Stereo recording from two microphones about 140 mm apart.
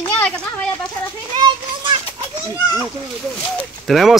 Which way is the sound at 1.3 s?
35° right (ahead or behind).